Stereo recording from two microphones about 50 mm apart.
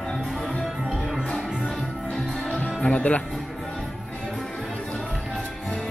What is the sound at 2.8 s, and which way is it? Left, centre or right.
Music, left.